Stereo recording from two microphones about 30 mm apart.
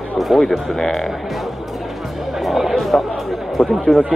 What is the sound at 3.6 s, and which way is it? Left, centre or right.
Speech, centre.